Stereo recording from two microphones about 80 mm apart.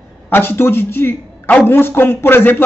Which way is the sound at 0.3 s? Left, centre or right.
Left.